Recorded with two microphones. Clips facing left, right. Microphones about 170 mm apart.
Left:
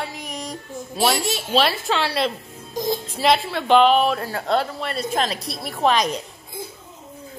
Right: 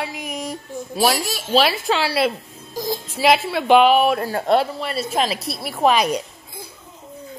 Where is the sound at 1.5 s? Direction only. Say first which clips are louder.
Right 3 dB; 5° right (ahead or behind).